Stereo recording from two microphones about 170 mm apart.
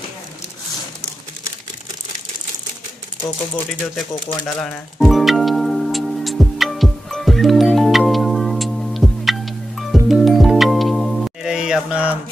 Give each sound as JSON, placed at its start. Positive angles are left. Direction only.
{"t": 4.5, "sound": "music", "side_deg": 5}